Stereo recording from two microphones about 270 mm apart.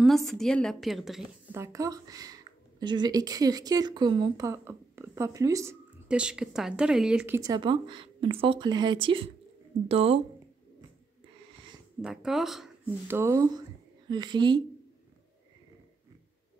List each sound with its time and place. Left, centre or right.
0.0 s a woman's voice: centre; by 10.2 s right
12.0 s a woman's voice: centre